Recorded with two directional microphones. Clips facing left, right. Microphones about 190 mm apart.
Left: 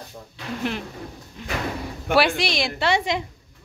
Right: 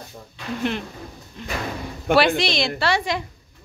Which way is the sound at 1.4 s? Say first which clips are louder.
Even; 10° left (ahead or behind).